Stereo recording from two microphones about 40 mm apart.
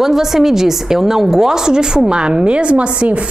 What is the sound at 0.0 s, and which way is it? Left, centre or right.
A woman's voice, centre.